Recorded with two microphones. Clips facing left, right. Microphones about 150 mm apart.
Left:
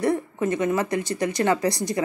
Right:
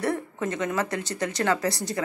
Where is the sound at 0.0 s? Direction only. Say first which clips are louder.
Left 4 dB; 15° left (ahead or behind).